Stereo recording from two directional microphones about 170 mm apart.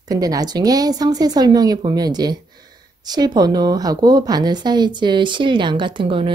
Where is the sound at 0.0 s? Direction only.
20° right (ahead or behind).